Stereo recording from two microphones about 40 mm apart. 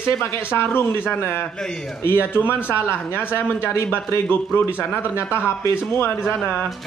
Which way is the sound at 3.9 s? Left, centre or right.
Left.